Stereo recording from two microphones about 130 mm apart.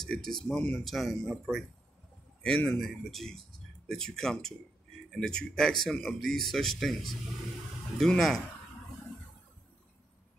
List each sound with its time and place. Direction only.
0.0 s speech: 5° left (ahead or behind)